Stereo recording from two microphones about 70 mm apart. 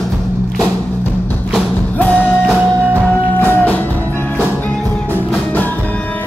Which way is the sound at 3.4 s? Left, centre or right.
Left.